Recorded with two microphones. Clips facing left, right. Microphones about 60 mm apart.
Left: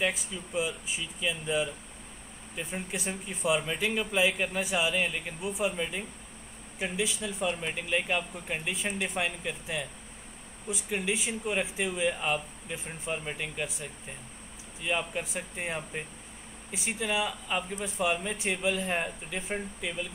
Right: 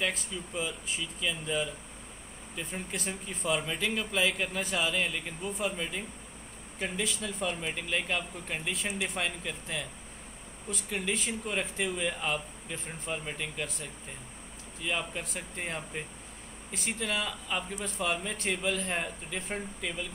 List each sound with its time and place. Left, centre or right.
0.0 s speech: centre